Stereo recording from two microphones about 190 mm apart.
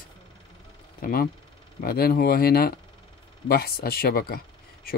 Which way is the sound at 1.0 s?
50° left (ahead or behind).